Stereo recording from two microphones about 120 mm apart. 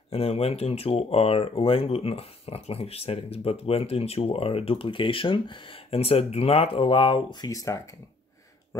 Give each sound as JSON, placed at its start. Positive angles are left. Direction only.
{"t": 0.1, "sound": "speech", "side_deg": 55}